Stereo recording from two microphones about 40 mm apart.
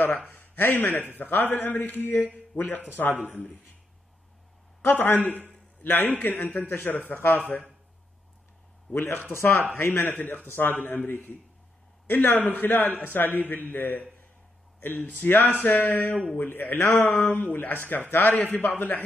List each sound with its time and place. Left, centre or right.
0.3 s a man's voice: left
4.8 s a man's voice: left
6.7 s a man's voice: left
7.3 s a man's voice: left
8.9 s a man's voice: left
9.8 s a man's voice: left
12.1 s a man's voice: left